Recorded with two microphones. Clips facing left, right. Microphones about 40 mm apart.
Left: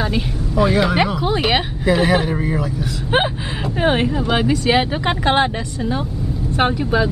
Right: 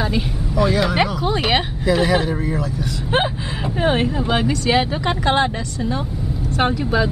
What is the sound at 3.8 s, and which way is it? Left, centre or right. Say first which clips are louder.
Speech: left 1 dB; centre.